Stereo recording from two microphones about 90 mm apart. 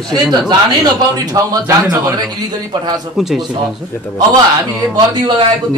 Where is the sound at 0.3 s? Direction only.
55° right (ahead or behind).